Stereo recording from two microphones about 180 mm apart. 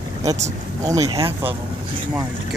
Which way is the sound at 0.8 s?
20° right (ahead or behind).